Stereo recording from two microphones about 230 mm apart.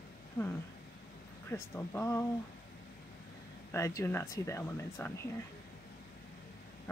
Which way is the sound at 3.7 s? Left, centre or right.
Centre.